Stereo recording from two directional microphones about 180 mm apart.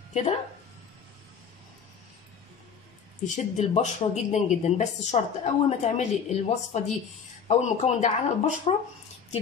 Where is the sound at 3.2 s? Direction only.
40° left (ahead or behind).